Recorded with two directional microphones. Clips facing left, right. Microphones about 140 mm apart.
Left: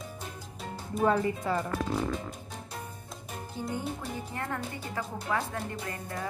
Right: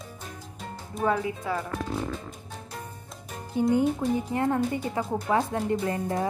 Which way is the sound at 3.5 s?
15° right (ahead or behind).